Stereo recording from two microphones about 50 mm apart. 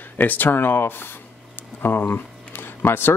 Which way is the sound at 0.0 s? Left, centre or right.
Left.